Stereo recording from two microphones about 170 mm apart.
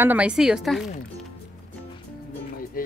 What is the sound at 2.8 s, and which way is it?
Speech, 55° left (ahead or behind).